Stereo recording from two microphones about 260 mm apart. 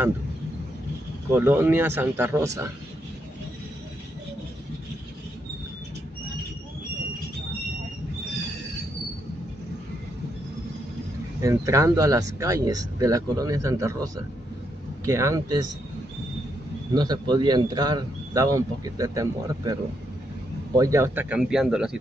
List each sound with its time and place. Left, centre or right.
1.3 s speech: centre
11.4 s speech: centre
16.9 s speech: centre